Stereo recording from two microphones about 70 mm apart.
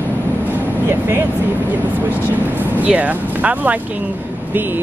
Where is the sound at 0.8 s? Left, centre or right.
Right.